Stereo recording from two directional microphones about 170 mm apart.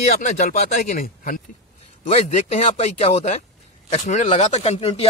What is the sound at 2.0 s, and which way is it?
Speech, 40° left (ahead or behind).